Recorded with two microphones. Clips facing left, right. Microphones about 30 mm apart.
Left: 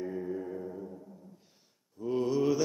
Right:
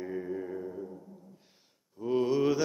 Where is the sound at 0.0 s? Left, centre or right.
Centre.